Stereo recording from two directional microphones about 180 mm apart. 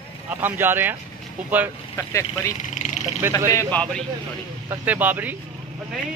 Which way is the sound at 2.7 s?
40° left (ahead or behind).